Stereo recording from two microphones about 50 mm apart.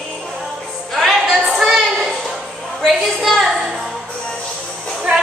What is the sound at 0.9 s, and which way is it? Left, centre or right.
Music, centre.